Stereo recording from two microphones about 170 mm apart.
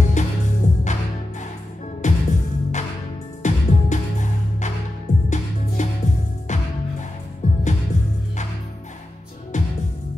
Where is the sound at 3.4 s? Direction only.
45° left (ahead or behind).